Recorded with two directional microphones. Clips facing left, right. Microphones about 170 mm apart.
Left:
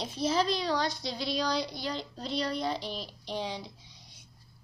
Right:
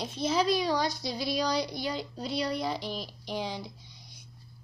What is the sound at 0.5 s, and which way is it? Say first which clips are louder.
Speech: right 3 dB; 10° right (ahead or behind).